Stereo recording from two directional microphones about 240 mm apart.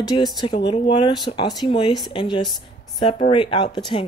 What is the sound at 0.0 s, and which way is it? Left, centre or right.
Speech, centre.